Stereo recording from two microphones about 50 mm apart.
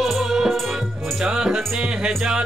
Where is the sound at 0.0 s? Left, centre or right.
Centre.